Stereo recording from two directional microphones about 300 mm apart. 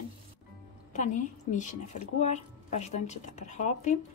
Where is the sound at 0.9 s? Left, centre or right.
Left.